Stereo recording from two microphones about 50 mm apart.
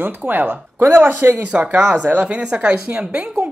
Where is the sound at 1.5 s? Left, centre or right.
Right.